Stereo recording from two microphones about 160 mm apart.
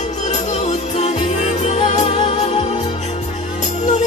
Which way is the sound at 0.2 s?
45° left (ahead or behind).